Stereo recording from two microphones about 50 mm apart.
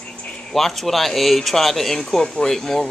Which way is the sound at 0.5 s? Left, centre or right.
Centre.